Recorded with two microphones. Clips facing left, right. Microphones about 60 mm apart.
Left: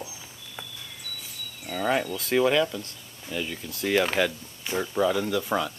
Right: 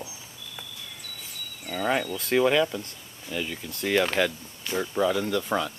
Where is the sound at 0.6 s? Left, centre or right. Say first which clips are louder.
Left 3 dB; centre.